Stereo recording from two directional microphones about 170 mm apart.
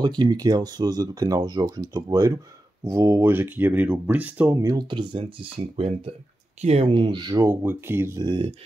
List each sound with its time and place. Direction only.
0.0 s speech: 25° right (ahead or behind)